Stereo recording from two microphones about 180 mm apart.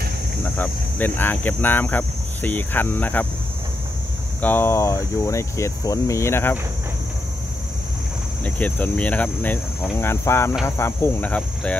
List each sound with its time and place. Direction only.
0.4 s speech: 10° left (ahead or behind)
4.4 s speech: 10° left (ahead or behind)
8.5 s speech: 10° left (ahead or behind)